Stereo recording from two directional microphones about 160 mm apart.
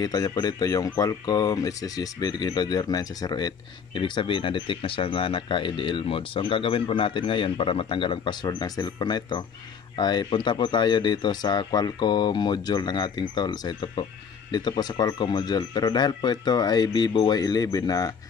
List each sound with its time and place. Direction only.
0.0 s speech: 25° left (ahead or behind)